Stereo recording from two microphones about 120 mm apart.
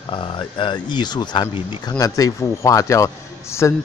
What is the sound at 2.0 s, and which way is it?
A man's voice, 30° left (ahead or behind).